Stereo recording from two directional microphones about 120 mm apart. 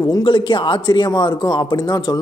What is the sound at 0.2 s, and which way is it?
Speech, 45° left (ahead or behind).